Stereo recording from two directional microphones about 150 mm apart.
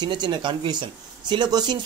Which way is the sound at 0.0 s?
30° right (ahead or behind).